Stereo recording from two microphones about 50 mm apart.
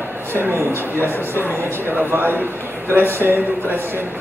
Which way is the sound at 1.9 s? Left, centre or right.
Right.